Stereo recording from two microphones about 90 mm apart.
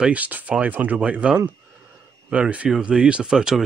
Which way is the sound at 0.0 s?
15° right (ahead or behind).